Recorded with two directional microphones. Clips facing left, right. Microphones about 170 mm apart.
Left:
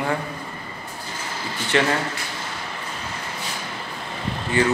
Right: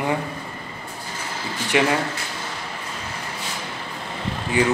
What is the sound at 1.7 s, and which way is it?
Speech, 10° right (ahead or behind).